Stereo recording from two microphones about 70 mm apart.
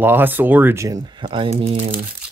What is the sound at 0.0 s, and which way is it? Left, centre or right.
Speech, right.